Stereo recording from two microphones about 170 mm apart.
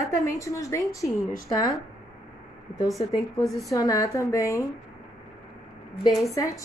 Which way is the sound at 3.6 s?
20° left (ahead or behind).